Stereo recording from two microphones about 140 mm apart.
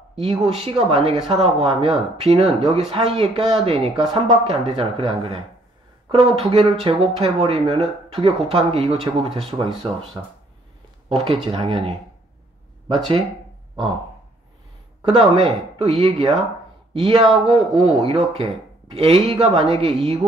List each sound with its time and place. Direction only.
0.1 s speech: 45° right (ahead or behind)
11.1 s speech: 45° right (ahead or behind)
15.0 s speech: 45° right (ahead or behind)